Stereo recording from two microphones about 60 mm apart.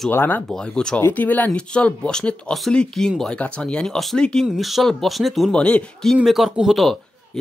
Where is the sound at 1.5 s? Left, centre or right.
Centre.